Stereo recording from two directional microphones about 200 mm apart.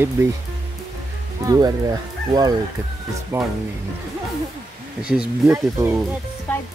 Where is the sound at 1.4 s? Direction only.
20° right (ahead or behind).